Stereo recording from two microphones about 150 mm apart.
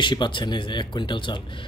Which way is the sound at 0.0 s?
30° left (ahead or behind).